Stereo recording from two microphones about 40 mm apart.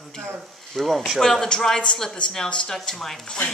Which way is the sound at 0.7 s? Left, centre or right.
Centre.